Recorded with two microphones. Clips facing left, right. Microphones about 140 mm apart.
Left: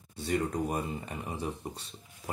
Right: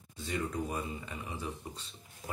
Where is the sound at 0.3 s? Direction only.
40° left (ahead or behind).